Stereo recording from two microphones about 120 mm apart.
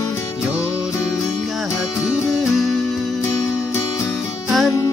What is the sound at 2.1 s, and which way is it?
Music, centre (ahead or behind).